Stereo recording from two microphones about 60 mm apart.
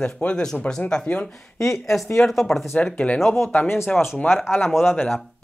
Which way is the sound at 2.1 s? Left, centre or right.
Centre.